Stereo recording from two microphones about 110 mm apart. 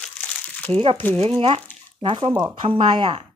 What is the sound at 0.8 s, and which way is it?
Speech, 60° right (ahead or behind).